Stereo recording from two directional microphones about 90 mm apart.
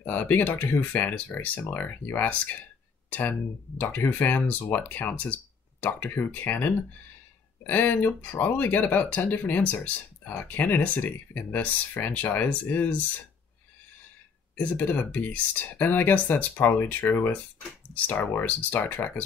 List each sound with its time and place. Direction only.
0.0 s speech: 20° left (ahead or behind)
14.6 s speech: 15° left (ahead or behind)